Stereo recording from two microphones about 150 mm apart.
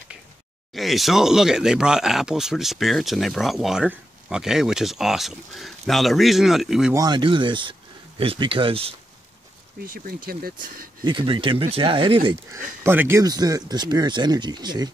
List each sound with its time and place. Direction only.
0.7 s speech: centre (ahead or behind)
6.9 s speech: 25° right (ahead or behind)
9.8 s speech: 75° right (ahead or behind)
11.1 s speech: 35° right (ahead or behind)
12.5 s speech: 15° right (ahead or behind)
13.2 s speech: 25° right (ahead or behind)